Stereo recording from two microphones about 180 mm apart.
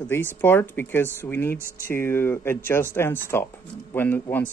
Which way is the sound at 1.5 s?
50° left (ahead or behind).